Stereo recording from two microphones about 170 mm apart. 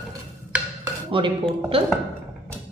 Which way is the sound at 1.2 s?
30° right (ahead or behind).